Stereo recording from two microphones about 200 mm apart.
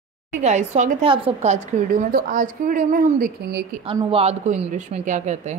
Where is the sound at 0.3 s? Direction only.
35° right (ahead or behind).